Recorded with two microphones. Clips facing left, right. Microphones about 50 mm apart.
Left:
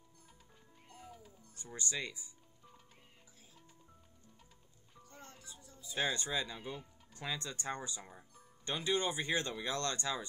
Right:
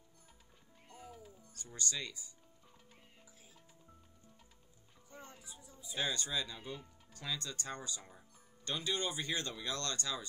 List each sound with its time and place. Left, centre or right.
0.8 s music: centre
1.5 s speech: left
5.1 s music: centre
5.9 s speech: left
6.5 s speech: centre
7.2 s speech: left